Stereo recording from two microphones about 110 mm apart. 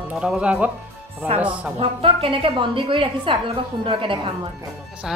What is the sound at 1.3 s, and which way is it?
A woman's voice, 65° right (ahead or behind).